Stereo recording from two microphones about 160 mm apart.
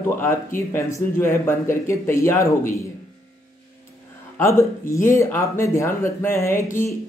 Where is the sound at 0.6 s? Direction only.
15° left (ahead or behind).